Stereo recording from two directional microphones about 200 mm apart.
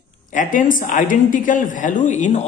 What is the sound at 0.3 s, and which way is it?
Speech, 40° left (ahead or behind).